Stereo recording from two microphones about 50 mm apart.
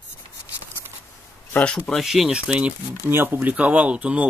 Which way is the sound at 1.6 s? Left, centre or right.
Left.